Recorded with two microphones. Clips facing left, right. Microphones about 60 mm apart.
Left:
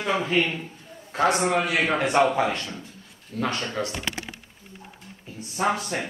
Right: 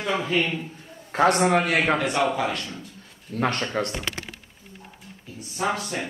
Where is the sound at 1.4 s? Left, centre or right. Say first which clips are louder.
Right 3 dB; right.